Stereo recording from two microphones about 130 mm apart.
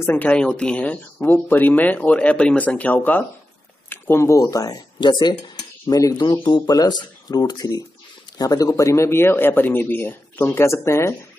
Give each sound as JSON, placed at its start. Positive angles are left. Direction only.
{"t": 0.0, "sound": "speech", "side_deg": 15}